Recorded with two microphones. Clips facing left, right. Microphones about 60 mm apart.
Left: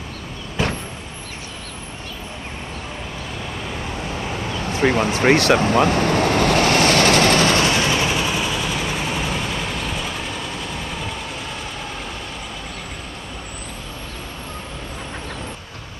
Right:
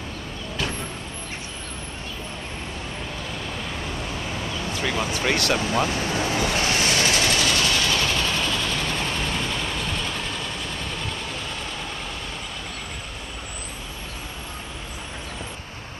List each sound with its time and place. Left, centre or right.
0.6 s vehicle: left
4.7 s vehicle: left; by 11.1 s centre